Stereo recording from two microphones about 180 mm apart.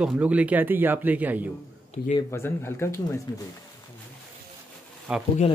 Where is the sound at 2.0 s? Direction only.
50° left (ahead or behind).